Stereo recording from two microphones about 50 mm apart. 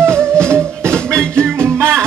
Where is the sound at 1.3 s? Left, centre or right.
Right.